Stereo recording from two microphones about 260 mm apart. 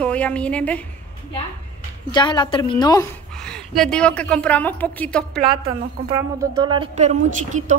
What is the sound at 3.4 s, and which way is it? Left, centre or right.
Speech, centre.